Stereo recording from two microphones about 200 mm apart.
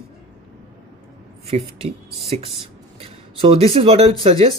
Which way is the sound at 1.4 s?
30° right (ahead or behind).